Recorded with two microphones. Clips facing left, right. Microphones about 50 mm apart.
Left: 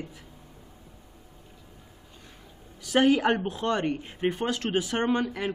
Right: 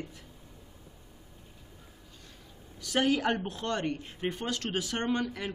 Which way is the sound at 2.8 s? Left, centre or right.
Centre.